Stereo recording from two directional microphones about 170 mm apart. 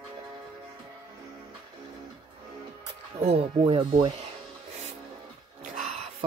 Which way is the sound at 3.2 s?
35° right (ahead or behind).